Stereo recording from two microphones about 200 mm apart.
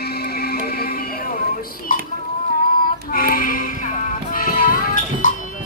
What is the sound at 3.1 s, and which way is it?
Music, 45° left (ahead or behind).